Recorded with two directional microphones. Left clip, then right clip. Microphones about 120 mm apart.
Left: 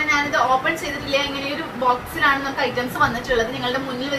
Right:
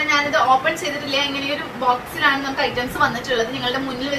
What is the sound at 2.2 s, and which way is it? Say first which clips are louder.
A woman's voice: even; 5° right (ahead or behind).